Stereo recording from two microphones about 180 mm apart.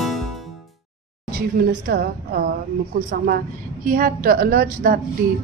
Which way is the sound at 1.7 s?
55° right (ahead or behind).